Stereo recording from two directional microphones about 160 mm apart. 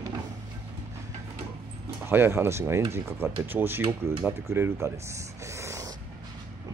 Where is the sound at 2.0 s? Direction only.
15° right (ahead or behind).